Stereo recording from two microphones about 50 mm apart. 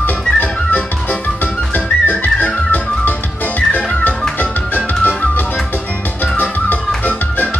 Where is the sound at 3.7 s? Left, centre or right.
Left.